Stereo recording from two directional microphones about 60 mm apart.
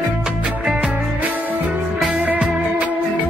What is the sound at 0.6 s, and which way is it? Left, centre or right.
Music, centre.